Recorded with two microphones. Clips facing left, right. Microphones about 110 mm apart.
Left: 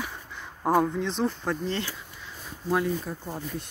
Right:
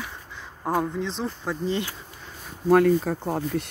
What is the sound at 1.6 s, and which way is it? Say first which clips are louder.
Speech: right 4 dB; 15° right (ahead or behind).